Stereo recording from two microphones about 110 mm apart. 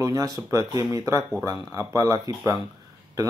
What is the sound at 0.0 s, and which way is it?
A man's voice, 35° right (ahead or behind).